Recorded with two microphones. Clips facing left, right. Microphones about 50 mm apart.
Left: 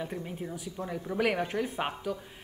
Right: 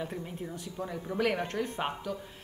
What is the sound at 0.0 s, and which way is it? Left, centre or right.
A woman's voice, centre.